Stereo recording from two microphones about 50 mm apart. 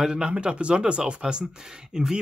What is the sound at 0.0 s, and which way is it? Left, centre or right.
Speech, centre.